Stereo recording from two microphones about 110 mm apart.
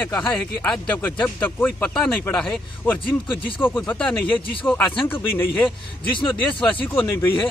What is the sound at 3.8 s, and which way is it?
Speech, 10° left (ahead or behind).